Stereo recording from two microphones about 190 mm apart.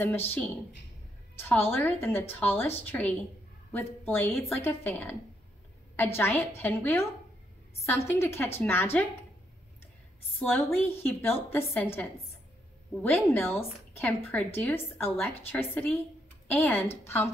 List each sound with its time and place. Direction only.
1.4 s a woman's voice: 10° left (ahead or behind)
10.4 s a woman's voice: 10° left (ahead or behind)